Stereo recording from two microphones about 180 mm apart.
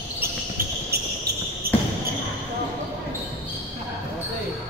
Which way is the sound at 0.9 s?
60° right (ahead or behind).